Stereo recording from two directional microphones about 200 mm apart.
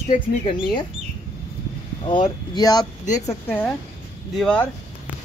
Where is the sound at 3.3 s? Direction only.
10° left (ahead or behind).